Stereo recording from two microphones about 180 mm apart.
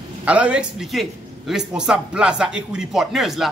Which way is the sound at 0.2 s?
5° right (ahead or behind).